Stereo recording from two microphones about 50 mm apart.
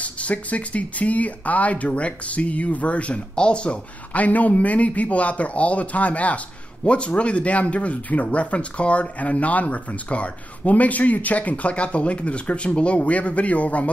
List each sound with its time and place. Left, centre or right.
0.0 s speech: left